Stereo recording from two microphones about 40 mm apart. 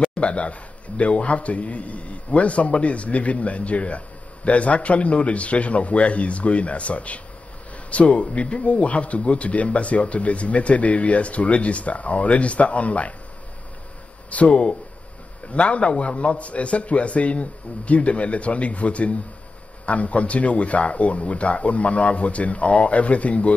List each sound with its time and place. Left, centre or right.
0.1 s speech: left
14.3 s speech: left